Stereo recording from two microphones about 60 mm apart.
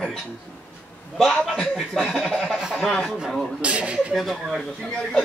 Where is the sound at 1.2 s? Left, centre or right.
Centre.